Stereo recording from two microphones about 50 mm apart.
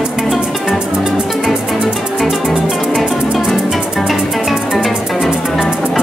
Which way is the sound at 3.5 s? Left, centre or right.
Centre.